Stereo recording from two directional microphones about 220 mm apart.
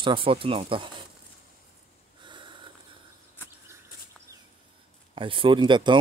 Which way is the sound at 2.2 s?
20° right (ahead or behind).